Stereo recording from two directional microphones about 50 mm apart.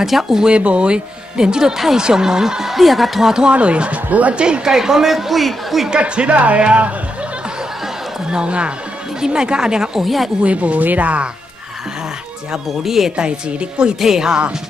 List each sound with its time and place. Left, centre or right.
0.0 s speech: centre
0.5 s speech: right; by 3.4 s centre
3.4 s speech: right; by 5.9 s centre
5.9 s speech: right
8.3 s speech: centre
10.0 s speech: centre
10.4 s speech: right
12.6 s speech: centre
13.1 s speech: centre